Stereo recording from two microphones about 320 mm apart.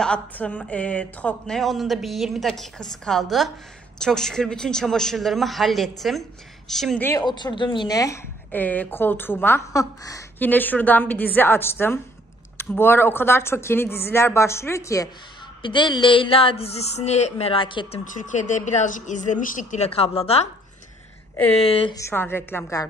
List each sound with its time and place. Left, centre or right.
0.0 s a woman's voice: centre
21.5 s a woman's voice: centre